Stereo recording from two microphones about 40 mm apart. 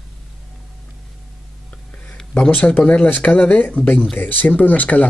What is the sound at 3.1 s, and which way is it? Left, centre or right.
Speech, left.